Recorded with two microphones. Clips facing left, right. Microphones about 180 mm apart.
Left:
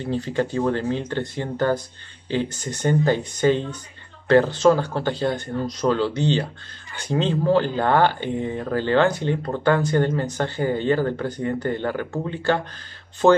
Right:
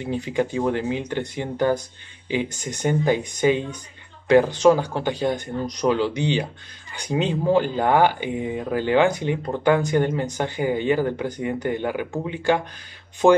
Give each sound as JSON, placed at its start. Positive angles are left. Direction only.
{"t": 0.0, "sound": "speech", "side_deg": -15}